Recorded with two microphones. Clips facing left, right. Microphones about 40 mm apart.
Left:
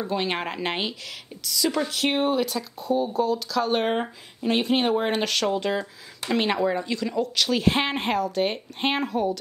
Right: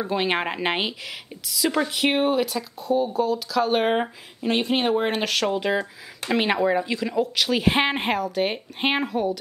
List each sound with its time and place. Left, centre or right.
0.0 s speech: centre
4.5 s speech: centre